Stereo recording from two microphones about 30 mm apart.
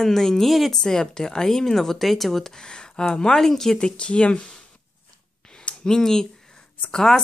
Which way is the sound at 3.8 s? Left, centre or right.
Left.